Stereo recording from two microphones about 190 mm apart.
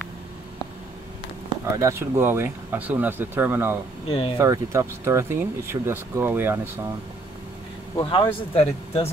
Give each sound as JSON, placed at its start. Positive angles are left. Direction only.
{"t": 1.8, "sound": "speech", "side_deg": -15}
{"t": 4.1, "sound": "speech", "side_deg": 30}
{"t": 4.4, "sound": "speech", "side_deg": -15}
{"t": 8.0, "sound": "speech", "side_deg": 25}